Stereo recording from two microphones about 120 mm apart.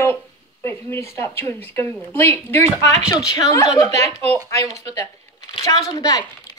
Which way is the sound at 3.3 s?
30° left (ahead or behind).